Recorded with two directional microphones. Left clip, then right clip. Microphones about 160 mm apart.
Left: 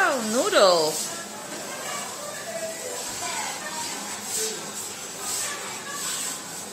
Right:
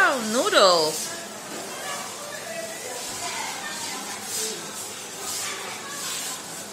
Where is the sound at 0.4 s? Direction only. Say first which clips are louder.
Right 1 dB; centre (ahead or behind).